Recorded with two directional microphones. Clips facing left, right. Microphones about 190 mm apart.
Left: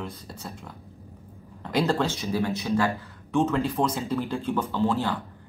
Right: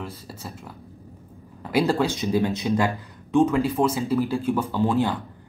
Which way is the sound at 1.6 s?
10° right (ahead or behind).